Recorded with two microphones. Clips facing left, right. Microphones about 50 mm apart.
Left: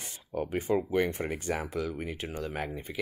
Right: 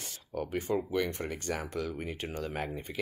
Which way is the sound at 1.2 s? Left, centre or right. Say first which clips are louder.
Left 3 dB; centre.